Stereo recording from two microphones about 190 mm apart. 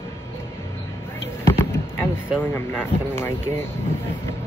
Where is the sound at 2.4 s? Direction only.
10° left (ahead or behind).